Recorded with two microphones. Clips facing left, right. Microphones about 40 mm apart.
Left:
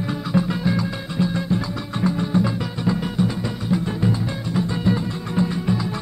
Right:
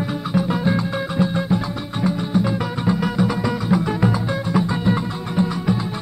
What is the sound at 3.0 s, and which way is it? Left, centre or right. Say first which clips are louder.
Music: right 3 dB; right.